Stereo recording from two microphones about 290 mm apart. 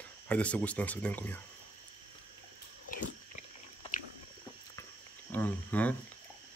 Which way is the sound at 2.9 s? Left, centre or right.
Left.